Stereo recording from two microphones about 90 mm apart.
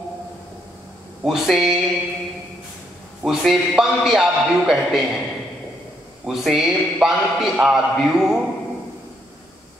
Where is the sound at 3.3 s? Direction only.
5° right (ahead or behind).